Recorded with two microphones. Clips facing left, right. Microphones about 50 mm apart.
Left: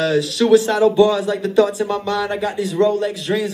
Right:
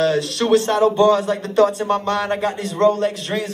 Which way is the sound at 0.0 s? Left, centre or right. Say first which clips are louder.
Left 1 dB; right.